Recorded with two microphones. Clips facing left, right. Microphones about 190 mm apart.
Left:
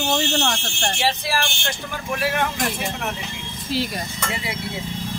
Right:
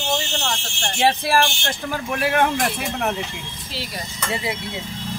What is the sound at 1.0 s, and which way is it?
Speech, 50° right (ahead or behind).